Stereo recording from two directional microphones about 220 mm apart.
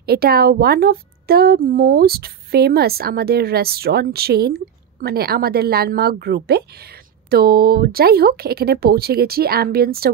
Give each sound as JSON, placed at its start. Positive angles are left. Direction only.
{"t": 0.0, "sound": "a woman's voice", "side_deg": -45}